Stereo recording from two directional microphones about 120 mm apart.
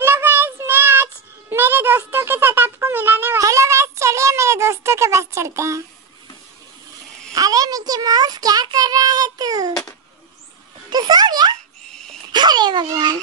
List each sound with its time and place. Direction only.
0.0 s child singing: 20° right (ahead or behind)
1.5 s a child's voice: 20° right (ahead or behind)
3.3 s a child's voice: 25° right (ahead or behind)
7.3 s a child's voice: 30° right (ahead or behind)
10.9 s a child's voice: 35° right (ahead or behind)
11.9 s dog: 5° left (ahead or behind)
12.3 s a child's voice: 35° right (ahead or behind)